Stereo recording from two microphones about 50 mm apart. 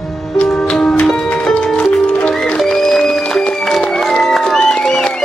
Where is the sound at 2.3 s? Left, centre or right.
Centre.